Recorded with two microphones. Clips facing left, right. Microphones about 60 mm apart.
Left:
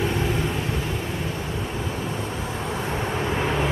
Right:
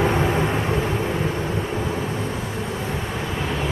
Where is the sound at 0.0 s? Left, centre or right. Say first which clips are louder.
Right 4 dB; right.